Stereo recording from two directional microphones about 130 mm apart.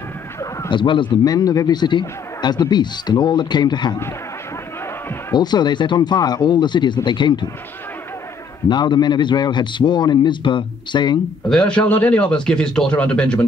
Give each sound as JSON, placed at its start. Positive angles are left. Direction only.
{"t": 0.7, "sound": "a man's voice", "side_deg": 40}
{"t": 5.3, "sound": "a man's voice", "side_deg": 35}
{"t": 8.6, "sound": "a man's voice", "side_deg": 35}
{"t": 11.4, "sound": "a man's voice", "side_deg": 5}